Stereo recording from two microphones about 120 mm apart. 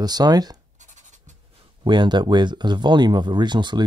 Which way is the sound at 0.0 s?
35° right (ahead or behind).